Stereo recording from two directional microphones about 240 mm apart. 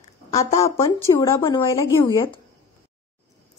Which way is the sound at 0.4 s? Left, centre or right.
Centre.